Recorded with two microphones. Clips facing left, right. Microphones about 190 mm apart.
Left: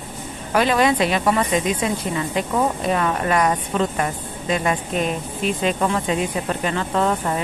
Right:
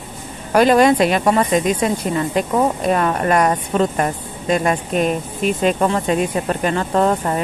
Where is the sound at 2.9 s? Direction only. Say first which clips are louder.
Right 3 dB; 45° right (ahead or behind).